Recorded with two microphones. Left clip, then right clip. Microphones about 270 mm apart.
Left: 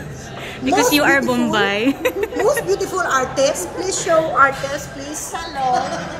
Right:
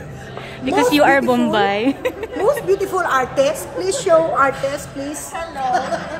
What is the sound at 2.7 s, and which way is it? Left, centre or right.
A woman's voice, centre.